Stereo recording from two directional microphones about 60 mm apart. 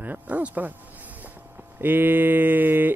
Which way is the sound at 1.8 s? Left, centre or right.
Right.